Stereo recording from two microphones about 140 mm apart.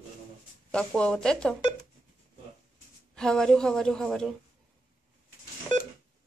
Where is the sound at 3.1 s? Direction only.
5° left (ahead or behind).